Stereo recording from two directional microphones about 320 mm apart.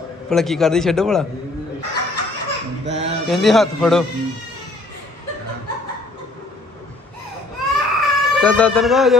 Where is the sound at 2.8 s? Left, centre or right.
Right.